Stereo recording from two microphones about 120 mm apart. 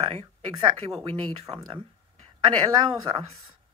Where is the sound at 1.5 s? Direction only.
30° right (ahead or behind).